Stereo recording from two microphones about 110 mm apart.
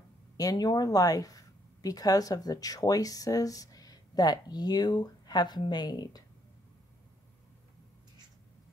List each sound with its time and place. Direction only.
0.4 s speech: 35° left (ahead or behind)